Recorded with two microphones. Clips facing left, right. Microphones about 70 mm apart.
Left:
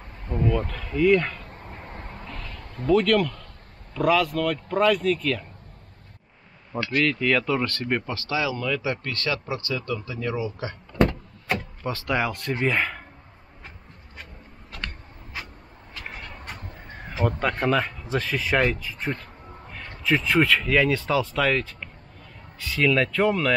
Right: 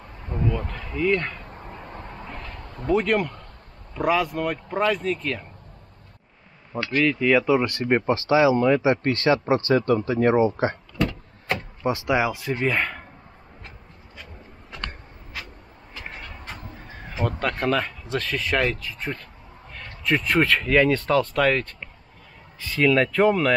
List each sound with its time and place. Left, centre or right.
0.7 s speech: centre
1.4 s a sound: right
1.7 s vehicle: left
2.1 s a sound: right
3.0 s speech: centre
6.7 s speech: centre
7.1 s speech: centre; by 10.8 s right
11.8 s speech: centre
16.2 s speech: centre